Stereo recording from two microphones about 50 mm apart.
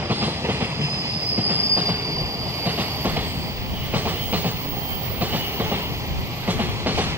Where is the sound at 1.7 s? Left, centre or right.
Right.